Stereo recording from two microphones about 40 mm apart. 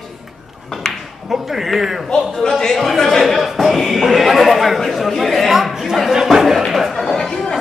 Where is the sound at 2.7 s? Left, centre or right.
Centre.